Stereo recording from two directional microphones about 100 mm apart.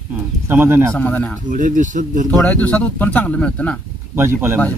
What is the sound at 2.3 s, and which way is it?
Speech, 10° left (ahead or behind).